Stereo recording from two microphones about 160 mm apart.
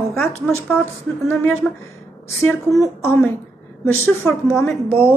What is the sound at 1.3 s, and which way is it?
Speech, 15° left (ahead or behind).